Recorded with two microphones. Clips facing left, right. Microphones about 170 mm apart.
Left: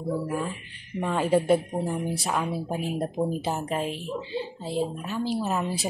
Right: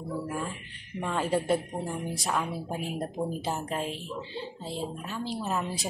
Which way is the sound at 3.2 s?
20° left (ahead or behind).